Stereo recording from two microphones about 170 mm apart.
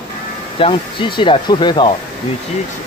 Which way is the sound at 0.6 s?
30° left (ahead or behind).